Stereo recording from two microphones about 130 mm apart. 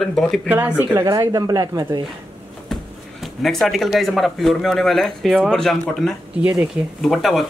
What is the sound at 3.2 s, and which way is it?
Speech, centre (ahead or behind).